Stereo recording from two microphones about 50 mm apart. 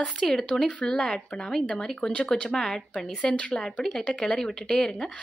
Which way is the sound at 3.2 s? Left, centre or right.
Left.